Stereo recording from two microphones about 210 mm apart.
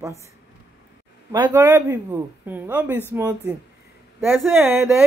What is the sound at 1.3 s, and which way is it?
Speech, 20° right (ahead or behind).